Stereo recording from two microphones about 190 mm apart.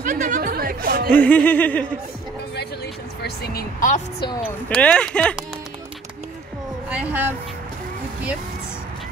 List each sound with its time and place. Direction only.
0.0 s music: 40° right (ahead or behind)
1.1 s a sound: 10° left (ahead or behind)
3.2 s a woman's voice: 55° left (ahead or behind)
4.6 s speech: 5° left (ahead or behind)
6.9 s speech: 5° right (ahead or behind)